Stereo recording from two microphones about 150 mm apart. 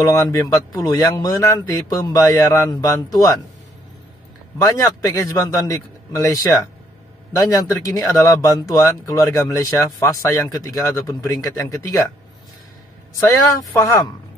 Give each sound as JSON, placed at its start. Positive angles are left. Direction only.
{"t": 0.0, "sound": "speech", "side_deg": 20}
{"t": 4.6, "sound": "speech", "side_deg": 25}
{"t": 13.3, "sound": "speech", "side_deg": 20}